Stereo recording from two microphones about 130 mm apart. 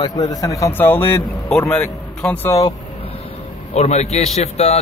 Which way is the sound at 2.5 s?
25° left (ahead or behind).